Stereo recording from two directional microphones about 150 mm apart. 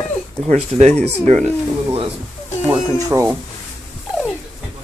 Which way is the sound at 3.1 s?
20° right (ahead or behind).